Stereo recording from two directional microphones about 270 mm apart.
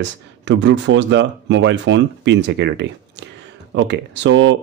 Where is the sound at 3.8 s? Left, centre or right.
Right.